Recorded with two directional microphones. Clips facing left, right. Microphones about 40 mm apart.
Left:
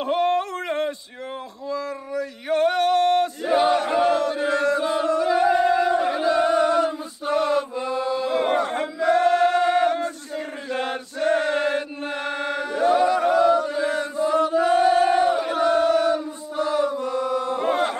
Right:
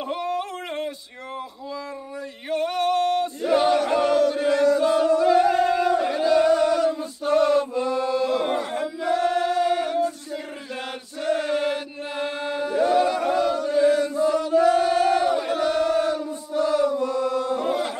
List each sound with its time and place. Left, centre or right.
0.1 s a sound: left
2.5 s singing: left
3.4 s chant: left
4.0 s chant: left
5.0 s music: left
5.3 s music: left
5.9 s chant: left
7.7 s chant: centre
8.0 s a sound: left
8.4 s chant: left
10.7 s chant: left